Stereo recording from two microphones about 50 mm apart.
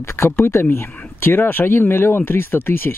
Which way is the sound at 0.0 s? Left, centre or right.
Left.